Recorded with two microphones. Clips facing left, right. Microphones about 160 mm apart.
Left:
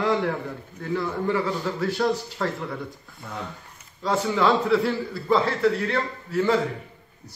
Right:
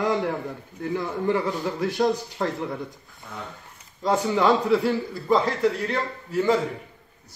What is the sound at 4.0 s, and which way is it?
A man's voice, 15° right (ahead or behind).